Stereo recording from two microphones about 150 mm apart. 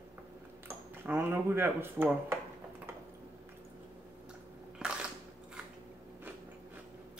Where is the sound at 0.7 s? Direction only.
15° right (ahead or behind).